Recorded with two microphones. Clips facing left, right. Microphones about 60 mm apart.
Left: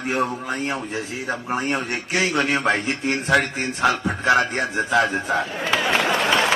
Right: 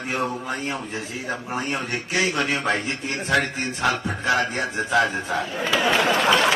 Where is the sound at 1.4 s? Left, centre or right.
Left.